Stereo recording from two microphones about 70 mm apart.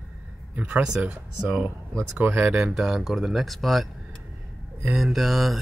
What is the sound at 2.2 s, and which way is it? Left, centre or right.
Speech, right.